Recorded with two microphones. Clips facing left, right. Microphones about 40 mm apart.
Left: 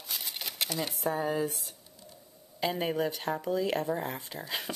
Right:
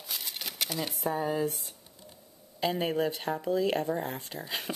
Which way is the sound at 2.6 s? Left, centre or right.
Centre.